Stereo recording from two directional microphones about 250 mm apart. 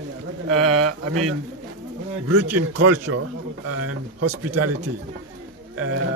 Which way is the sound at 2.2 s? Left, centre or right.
Right.